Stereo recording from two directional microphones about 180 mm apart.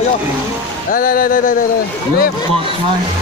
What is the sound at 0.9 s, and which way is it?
Speech, 50° left (ahead or behind).